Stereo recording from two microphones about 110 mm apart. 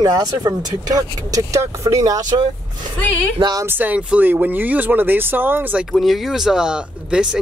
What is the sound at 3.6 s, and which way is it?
Speech, 15° right (ahead or behind).